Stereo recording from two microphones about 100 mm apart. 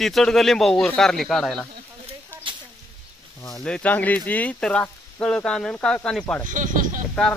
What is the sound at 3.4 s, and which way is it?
Speech, 35° left (ahead or behind).